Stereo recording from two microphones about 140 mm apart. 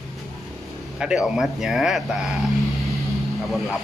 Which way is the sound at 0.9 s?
5° right (ahead or behind).